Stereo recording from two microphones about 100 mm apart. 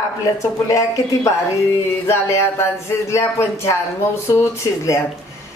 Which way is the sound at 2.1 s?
25° left (ahead or behind).